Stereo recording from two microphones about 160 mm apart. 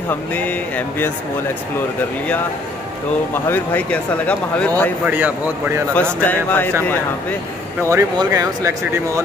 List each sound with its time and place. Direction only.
0.1 s speech: 10° left (ahead or behind)
3.4 s speech: 10° left (ahead or behind)
5.0 s a man's voice: 10° right (ahead or behind)
5.9 s speech: 10° left (ahead or behind)
7.9 s speech: 20° right (ahead or behind)